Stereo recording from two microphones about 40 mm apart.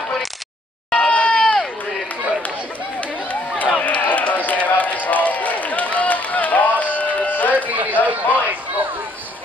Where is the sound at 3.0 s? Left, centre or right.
Left.